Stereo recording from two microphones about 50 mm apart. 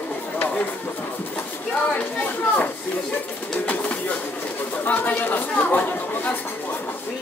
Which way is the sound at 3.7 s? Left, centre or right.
Left.